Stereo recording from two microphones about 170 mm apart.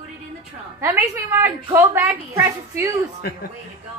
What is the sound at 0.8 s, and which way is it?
A woman's voice, 15° right (ahead or behind).